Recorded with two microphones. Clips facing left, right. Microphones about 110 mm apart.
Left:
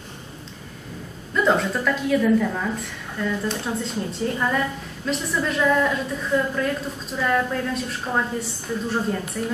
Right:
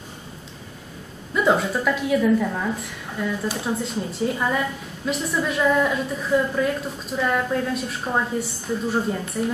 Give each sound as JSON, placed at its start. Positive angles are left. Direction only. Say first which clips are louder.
{"t": 1.3, "sound": "a woman's voice", "louder": "even", "side_deg": -5}